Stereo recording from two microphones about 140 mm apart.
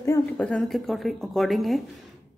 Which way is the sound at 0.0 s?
20° left (ahead or behind).